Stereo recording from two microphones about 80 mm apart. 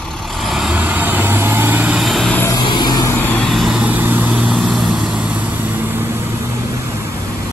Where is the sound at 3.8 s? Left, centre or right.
Right.